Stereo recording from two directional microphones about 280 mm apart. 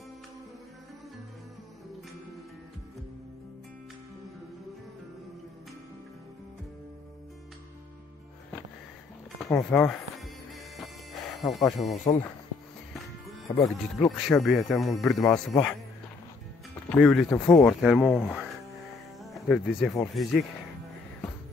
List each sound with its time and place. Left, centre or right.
9.4 s music: centre
11.3 s speech: centre
13.5 s speech: centre
14.2 s speech: centre
16.9 s speech: centre